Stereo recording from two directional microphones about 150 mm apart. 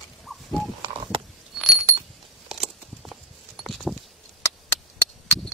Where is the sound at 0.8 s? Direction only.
30° right (ahead or behind).